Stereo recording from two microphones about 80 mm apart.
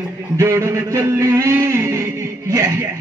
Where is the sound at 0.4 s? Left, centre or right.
Right.